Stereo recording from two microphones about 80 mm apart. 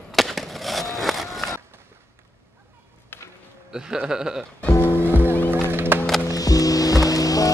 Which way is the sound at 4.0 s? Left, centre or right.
Centre.